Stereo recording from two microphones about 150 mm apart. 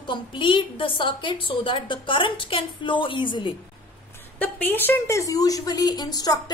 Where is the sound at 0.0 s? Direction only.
35° left (ahead or behind).